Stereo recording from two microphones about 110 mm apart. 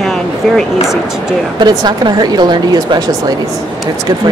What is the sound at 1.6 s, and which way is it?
A woman's voice, 40° right (ahead or behind).